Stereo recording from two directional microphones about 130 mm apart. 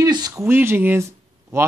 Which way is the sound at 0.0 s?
30° right (ahead or behind).